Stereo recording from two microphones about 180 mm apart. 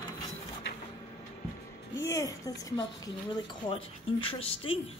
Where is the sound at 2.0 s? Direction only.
15° left (ahead or behind).